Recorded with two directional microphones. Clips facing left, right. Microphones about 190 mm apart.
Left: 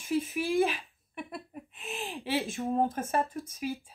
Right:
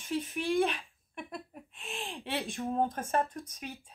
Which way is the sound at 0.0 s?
5° left (ahead or behind).